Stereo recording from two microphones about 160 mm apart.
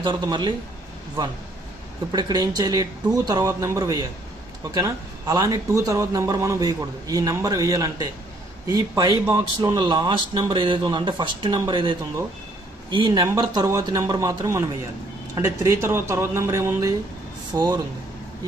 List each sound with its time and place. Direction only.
0.0 s speech: 25° right (ahead or behind)